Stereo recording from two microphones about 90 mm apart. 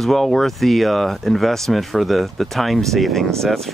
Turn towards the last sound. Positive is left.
turn(degrees=5)  # may be behind; listen again after turning